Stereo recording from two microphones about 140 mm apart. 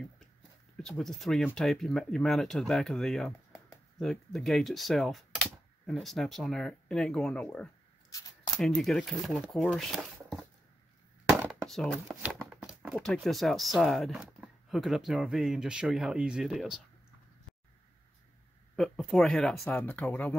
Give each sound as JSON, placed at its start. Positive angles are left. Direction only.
{"t": 0.7, "sound": "speech", "side_deg": 5}
{"t": 8.1, "sound": "scissors", "side_deg": 25}
{"t": 8.5, "sound": "speech", "side_deg": 5}
{"t": 11.6, "sound": "speech", "side_deg": 5}
{"t": 12.1, "sound": "speech", "side_deg": -10}
{"t": 12.9, "sound": "speech", "side_deg": 5}
{"t": 18.8, "sound": "speech", "side_deg": 0}
{"t": 19.6, "sound": "speech", "side_deg": 10}